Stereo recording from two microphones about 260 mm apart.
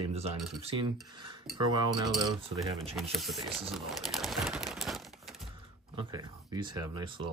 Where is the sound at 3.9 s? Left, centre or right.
Centre.